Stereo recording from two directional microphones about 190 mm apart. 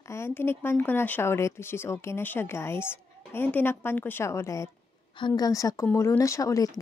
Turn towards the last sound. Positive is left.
turn(degrees=20)  # may be behind; listen again after turning